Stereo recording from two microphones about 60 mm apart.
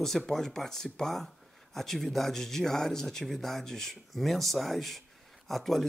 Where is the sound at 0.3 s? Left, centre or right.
Centre.